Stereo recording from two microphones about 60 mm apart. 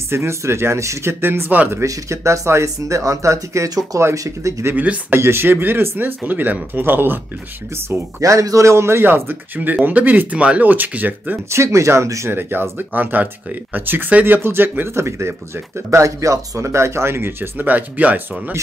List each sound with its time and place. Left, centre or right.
0.1 s speech: right
1.2 s speech: right
1.9 s speech: right
4.0 s speech: right
4.7 s speech: right
5.1 s speech: right
8.2 s speech: right
11.5 s speech: right
12.3 s speech: right
15.0 s speech: right